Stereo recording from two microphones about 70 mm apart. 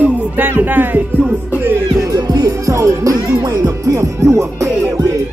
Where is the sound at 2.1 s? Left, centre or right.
Right.